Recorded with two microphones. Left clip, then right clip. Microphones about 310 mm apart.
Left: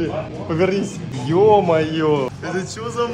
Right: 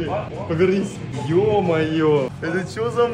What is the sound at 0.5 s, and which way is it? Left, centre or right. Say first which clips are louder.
A man's voice: even; left.